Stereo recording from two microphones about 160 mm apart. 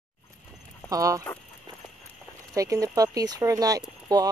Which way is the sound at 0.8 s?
20° right (ahead or behind).